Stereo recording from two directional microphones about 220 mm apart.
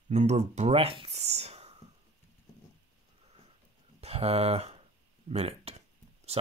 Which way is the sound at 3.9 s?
25° right (ahead or behind).